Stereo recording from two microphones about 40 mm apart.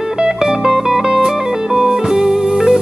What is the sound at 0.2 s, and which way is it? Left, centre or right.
Music, centre.